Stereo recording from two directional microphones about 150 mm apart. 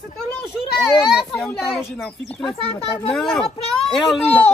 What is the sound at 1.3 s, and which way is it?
Speech, 10° left (ahead or behind).